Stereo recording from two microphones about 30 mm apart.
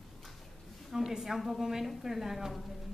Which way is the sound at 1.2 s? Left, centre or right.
Centre.